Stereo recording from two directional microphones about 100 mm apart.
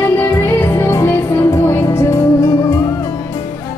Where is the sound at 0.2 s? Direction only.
25° left (ahead or behind).